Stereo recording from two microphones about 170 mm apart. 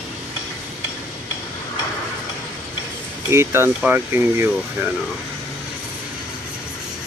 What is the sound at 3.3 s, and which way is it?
Speech, 15° right (ahead or behind).